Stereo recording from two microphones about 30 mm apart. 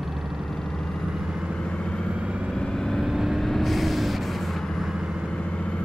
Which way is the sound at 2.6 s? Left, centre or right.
Left.